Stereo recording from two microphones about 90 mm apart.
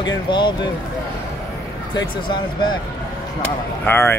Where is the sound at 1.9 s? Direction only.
55° left (ahead or behind).